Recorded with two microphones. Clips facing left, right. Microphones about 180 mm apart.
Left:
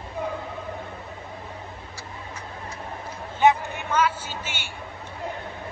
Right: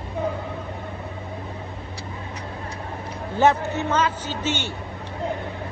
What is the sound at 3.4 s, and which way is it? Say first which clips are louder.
A woman's voice: right 1 dB; 15° left (ahead or behind).